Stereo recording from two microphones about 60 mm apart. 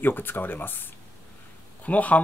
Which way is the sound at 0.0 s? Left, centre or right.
Left.